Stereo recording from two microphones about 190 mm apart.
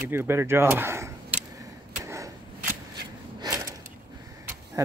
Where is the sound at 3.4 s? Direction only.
15° right (ahead or behind).